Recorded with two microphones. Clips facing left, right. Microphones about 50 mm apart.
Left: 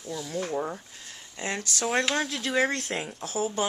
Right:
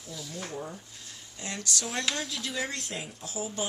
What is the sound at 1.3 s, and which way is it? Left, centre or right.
Speech, left.